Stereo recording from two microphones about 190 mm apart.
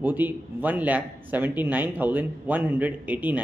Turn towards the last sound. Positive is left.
turn(degrees=-10)  # may be behind; listen again after turning